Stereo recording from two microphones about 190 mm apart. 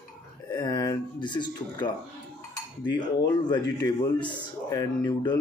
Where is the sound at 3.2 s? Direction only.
20° left (ahead or behind).